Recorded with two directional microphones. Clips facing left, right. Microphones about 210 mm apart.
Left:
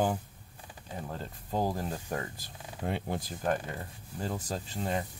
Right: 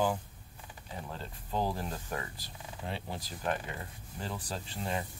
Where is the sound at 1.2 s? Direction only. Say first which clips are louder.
Left 2 dB; 45° left (ahead or behind).